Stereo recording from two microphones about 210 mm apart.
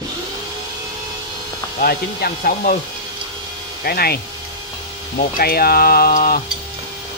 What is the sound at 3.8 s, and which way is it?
Speech, 45° left (ahead or behind).